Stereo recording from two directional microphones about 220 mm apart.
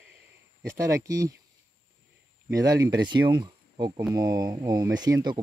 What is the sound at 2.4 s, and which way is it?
Speech, 15° right (ahead or behind).